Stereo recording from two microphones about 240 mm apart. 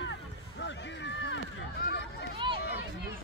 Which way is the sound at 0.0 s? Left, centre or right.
Left.